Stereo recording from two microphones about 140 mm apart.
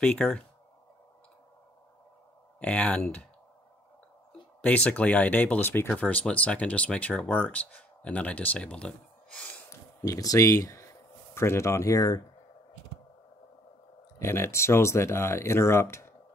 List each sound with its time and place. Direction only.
0.0 s speech: 10° left (ahead or behind)
2.6 s speech: 10° left (ahead or behind)
4.6 s speech: 10° left (ahead or behind)
9.7 s a sound: 20° left (ahead or behind)
11.3 s speech: 20° left (ahead or behind)
14.2 s speech: 20° left (ahead or behind)